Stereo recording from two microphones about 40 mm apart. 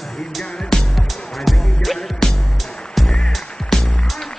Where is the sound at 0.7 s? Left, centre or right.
Centre.